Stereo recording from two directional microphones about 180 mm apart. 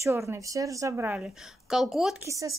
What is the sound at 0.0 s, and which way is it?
A woman's voice, 15° right (ahead or behind).